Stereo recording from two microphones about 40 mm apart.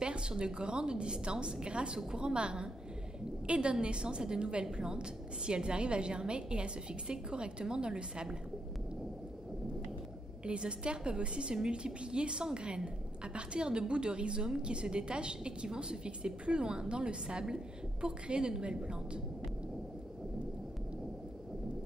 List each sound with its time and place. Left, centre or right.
0.0 s a woman's voice: right
10.4 s a woman's voice: right